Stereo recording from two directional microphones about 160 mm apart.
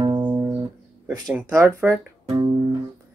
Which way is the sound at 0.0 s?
30° right (ahead or behind).